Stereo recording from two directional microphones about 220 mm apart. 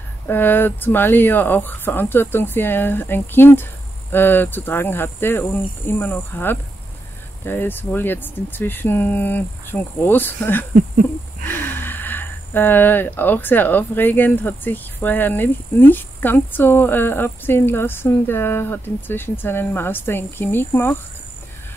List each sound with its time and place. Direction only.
0.3 s speech: 10° left (ahead or behind)